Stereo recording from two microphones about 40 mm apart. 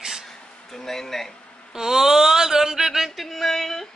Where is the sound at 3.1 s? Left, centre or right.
Centre.